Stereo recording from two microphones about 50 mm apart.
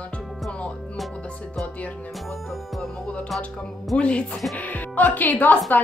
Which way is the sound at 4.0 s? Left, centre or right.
Left.